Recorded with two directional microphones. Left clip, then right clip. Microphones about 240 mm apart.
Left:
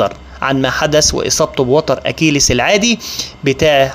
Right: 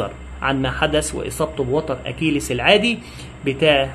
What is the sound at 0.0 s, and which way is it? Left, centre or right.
Speech, left.